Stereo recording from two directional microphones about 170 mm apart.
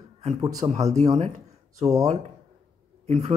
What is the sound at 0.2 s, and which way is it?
Speech, 40° right (ahead or behind).